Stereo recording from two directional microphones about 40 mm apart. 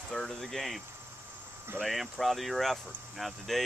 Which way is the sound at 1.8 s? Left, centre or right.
Centre.